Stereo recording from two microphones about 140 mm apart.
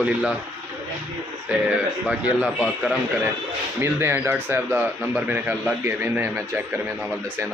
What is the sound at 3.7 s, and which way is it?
Speech, 15° right (ahead or behind).